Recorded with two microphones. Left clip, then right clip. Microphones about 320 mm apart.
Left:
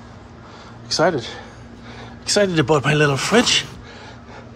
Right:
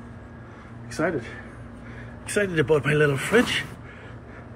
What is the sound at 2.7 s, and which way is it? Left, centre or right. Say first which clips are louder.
Speech: left 3 dB; left.